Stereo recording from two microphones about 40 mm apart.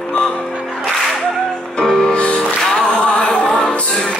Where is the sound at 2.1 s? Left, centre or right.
Left.